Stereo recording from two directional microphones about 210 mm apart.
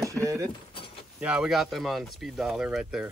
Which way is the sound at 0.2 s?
15° right (ahead or behind).